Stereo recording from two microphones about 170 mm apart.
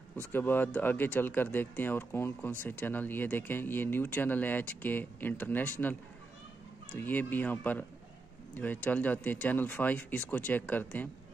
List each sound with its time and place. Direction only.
0.3 s speech: 10° left (ahead or behind)
6.9 s speech: 10° left (ahead or behind)